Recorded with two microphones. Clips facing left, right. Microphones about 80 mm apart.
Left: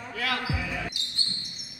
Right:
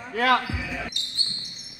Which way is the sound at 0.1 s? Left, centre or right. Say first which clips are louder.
Right 10 dB; right.